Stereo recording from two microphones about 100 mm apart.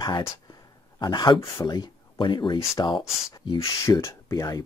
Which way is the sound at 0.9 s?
45° left (ahead or behind).